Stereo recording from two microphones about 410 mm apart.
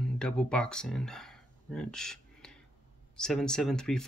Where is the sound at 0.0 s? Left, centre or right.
Centre.